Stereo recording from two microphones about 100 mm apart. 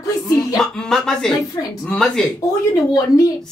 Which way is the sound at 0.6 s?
5° left (ahead or behind).